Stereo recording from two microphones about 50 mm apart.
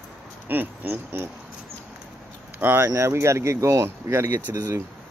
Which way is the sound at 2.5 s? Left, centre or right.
Right.